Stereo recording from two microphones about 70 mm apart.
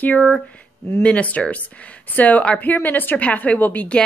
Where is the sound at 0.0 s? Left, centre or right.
Left.